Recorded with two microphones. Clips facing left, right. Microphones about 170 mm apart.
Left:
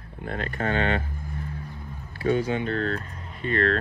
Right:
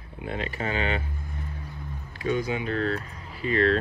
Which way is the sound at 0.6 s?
35° left (ahead or behind).